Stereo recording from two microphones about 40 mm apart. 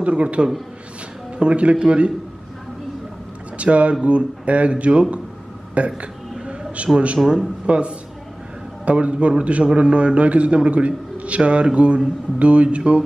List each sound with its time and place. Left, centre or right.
0.0 s a man's voice: right
3.5 s a man's voice: right
7.2 s speech: centre
7.6 s a man's voice: right